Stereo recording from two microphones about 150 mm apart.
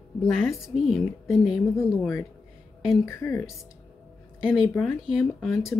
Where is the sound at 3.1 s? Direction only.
15° left (ahead or behind).